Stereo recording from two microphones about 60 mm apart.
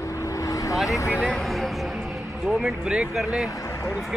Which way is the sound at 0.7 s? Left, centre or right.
Centre.